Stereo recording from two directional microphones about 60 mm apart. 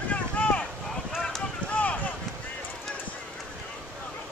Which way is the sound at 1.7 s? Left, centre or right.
Left.